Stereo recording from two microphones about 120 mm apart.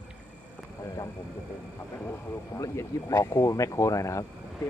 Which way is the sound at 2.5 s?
25° left (ahead or behind).